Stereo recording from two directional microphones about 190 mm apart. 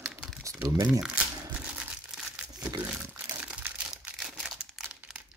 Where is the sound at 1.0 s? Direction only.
5° right (ahead or behind).